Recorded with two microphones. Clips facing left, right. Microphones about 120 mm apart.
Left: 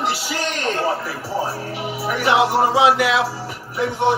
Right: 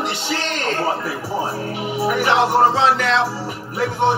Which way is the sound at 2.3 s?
10° left (ahead or behind).